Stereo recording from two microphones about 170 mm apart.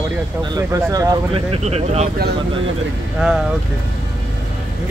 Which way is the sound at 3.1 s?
5° right (ahead or behind).